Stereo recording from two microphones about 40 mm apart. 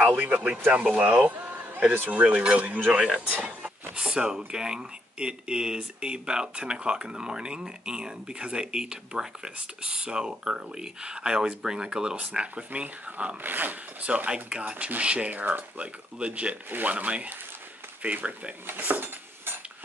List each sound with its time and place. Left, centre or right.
0.0 s speech: right
3.0 s speech: centre
3.3 s speech: right
3.9 s speech: right
13.4 s speech: right
14.0 s speech: right